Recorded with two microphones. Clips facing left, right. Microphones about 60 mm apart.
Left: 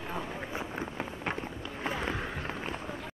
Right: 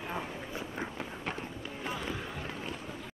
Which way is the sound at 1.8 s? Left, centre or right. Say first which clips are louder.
Left 4 dB; left.